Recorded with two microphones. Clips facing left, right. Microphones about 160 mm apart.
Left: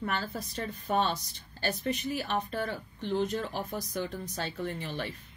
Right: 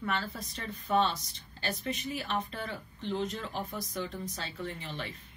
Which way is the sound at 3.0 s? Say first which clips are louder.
Left 4 dB; 55° left (ahead or behind).